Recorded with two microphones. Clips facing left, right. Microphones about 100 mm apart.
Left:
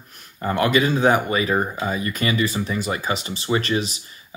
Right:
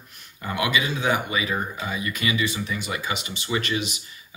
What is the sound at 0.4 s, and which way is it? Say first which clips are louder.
Speech: left 6 dB; 45° left (ahead or behind).